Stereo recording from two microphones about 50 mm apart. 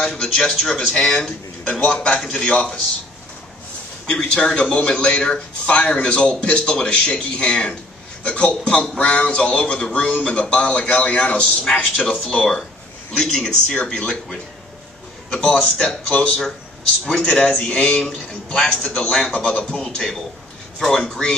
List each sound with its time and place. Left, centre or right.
0.0 s a man's voice: centre
4.1 s a man's voice: left
15.3 s a man's voice: left